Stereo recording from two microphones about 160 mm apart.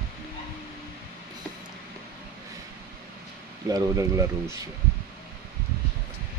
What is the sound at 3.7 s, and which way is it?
Speech, 20° right (ahead or behind).